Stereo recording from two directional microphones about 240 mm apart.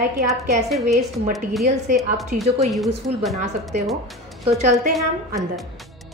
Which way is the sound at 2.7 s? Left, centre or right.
Centre.